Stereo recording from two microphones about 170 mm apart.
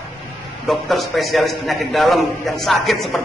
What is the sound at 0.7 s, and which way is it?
A man's voice, centre (ahead or behind).